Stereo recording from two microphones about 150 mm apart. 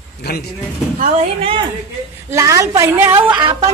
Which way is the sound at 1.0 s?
50° right (ahead or behind).